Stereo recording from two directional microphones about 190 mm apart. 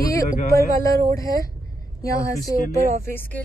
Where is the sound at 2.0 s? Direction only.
15° left (ahead or behind).